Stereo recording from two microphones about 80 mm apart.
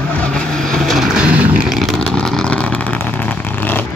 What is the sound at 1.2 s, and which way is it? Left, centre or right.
Vehicle, centre.